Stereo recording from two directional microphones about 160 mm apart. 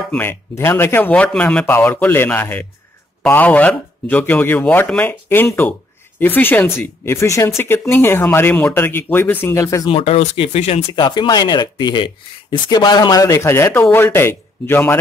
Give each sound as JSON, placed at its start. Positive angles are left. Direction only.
{"t": 0.1, "sound": "speech", "side_deg": 10}
{"t": 9.8, "sound": "speech", "side_deg": 35}
{"t": 11.1, "sound": "speech", "side_deg": 25}